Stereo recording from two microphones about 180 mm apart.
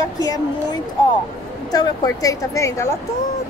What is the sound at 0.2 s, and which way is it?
A woman's voice, 20° left (ahead or behind).